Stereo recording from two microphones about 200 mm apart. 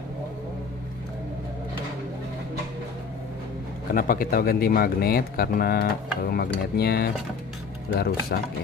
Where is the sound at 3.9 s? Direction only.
45° left (ahead or behind).